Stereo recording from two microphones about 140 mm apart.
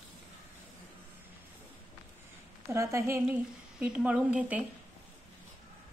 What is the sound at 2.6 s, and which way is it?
Speech, 20° right (ahead or behind).